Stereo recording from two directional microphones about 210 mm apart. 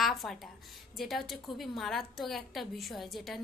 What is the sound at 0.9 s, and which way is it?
Speech, centre (ahead or behind).